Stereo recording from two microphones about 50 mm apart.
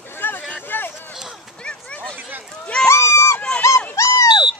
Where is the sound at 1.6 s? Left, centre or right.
Centre.